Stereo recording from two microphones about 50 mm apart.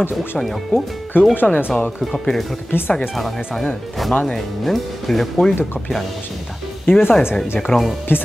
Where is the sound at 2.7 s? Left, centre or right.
Left.